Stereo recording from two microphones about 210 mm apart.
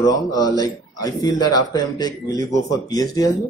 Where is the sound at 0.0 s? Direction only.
15° left (ahead or behind).